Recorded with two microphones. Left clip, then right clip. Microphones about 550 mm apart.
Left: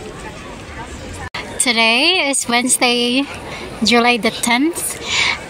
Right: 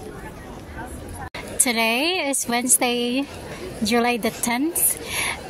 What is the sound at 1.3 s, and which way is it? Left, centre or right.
A woman's voice, right.